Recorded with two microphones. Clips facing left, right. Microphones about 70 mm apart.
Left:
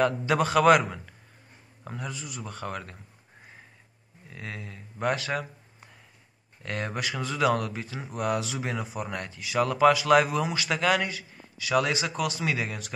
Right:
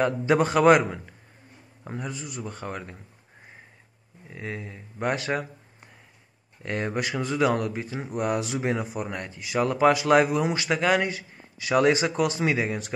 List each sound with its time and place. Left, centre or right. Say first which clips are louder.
0.0 s speech: right 2 dB; right
1.9 s speech: right 3 dB; centre
4.3 s speech: right 4 dB; centre
6.6 s speech: right 4 dB; right
9.0 s speech: right 1 dB; centre
11.1 s speech: right 1 dB; right